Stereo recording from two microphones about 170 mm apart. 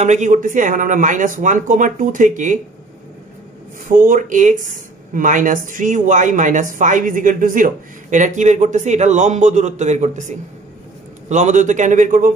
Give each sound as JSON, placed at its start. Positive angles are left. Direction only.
{"t": 0.0, "sound": "speech", "side_deg": -45}
{"t": 3.9, "sound": "speech", "side_deg": -50}